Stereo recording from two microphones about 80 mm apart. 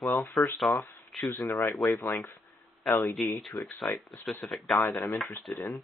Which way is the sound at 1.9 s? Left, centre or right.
Left.